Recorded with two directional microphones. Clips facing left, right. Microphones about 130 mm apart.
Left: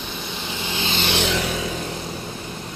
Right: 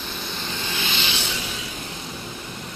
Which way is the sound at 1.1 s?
75° left (ahead or behind).